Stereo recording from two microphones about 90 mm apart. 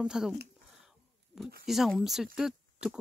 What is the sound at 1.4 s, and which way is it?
Speech, 5° right (ahead or behind).